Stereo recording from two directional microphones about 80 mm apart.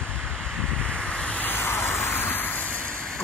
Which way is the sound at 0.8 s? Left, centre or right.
Centre.